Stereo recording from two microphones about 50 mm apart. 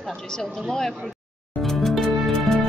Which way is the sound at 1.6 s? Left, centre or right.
Centre.